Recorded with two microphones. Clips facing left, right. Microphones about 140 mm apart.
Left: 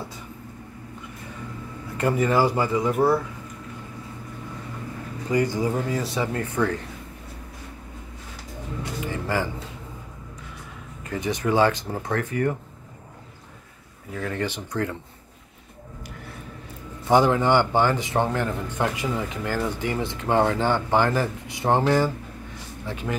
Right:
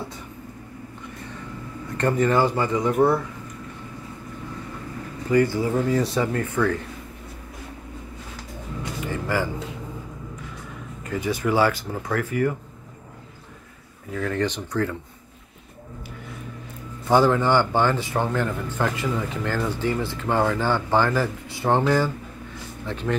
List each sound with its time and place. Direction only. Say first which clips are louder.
2.0 s a man's voice: right 1 dB; 5° left (ahead or behind)
5.3 s a man's voice: right 3 dB; 15° left (ahead or behind)
9.0 s music: right 1 dB; 20° left (ahead or behind)
11.1 s speech: right 1 dB; 25° left (ahead or behind)
14.1 s speech: right 3 dB; 25° left (ahead or behind)
14.4 s a man's voice: right 2 dB; 10° left (ahead or behind)
17.1 s a man's voice: even; 20° left (ahead or behind)